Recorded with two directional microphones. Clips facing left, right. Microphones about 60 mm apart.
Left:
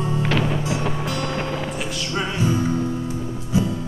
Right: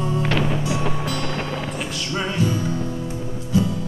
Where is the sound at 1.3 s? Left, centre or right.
Centre.